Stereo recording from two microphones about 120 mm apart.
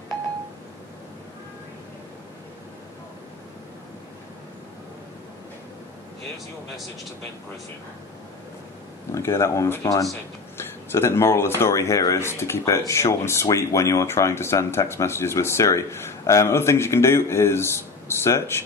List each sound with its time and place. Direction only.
9.1 s speech: 25° left (ahead or behind)